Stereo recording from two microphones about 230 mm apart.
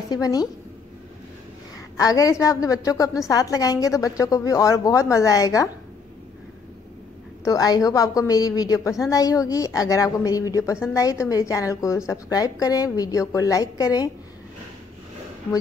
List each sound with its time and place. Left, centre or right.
0.1 s a woman's voice: centre
2.0 s a woman's voice: centre
7.4 s a woman's voice: centre